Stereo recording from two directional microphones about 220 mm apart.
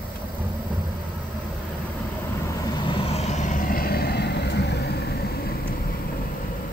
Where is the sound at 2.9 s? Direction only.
30° left (ahead or behind); by 5.1 s 50° left (ahead or behind).